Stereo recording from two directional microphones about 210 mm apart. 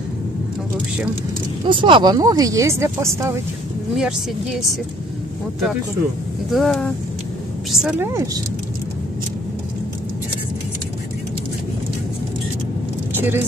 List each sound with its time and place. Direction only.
1.7 s speech: 25° right (ahead or behind); by 4.6 s 5° right (ahead or behind)
6.5 s speech: centre (ahead or behind)
13.1 s vehicle: 10° right (ahead or behind)